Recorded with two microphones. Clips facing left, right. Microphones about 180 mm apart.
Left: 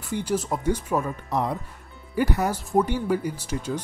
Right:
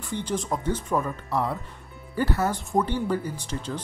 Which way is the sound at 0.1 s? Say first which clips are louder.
Left 2 dB; 10° left (ahead or behind).